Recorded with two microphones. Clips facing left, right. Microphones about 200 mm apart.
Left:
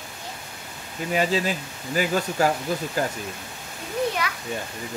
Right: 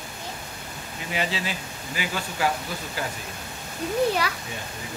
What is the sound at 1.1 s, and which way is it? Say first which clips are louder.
Speech: left 6 dB; 45° left (ahead or behind).